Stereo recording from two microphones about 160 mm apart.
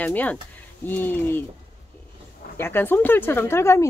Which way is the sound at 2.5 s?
15° left (ahead or behind).